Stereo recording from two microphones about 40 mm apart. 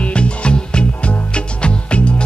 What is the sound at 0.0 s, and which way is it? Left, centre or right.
Music, left.